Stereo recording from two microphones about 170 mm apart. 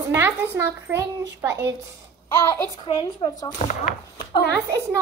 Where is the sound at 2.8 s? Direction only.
25° left (ahead or behind).